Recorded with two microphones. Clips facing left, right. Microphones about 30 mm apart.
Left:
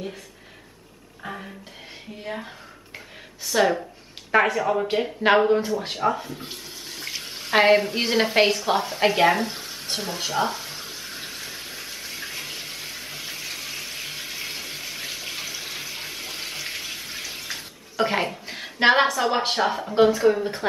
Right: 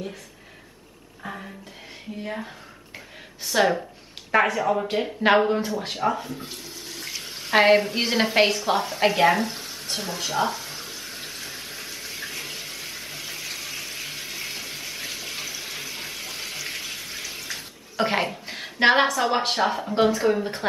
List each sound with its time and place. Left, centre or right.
1.2 s a sound: centre
2.2 s speech: centre
6.3 s water tap: centre
17.9 s a woman's voice: centre